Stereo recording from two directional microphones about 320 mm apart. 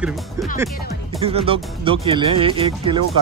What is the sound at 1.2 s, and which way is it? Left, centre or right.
Speech, centre.